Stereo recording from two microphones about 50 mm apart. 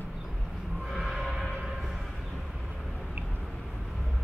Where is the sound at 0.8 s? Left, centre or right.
Centre.